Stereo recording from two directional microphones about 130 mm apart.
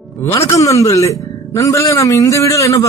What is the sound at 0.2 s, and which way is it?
Speech, 20° left (ahead or behind).